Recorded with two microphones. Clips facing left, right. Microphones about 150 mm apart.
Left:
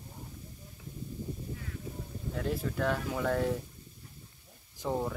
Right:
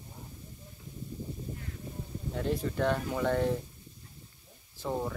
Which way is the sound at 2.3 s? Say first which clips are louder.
Right 2 dB; centre (ahead or behind).